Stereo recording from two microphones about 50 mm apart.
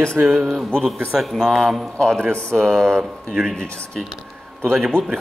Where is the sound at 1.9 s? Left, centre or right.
Centre.